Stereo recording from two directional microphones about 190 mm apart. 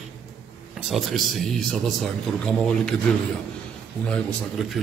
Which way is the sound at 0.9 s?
Centre (ahead or behind).